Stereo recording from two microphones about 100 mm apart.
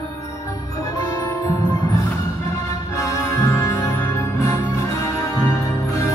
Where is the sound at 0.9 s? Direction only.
35° left (ahead or behind).